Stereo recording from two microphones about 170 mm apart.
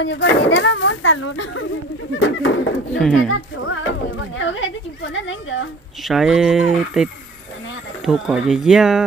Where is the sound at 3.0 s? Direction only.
5° left (ahead or behind).